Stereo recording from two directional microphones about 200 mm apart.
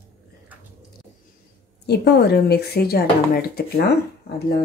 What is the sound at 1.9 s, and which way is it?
Speech, 55° left (ahead or behind).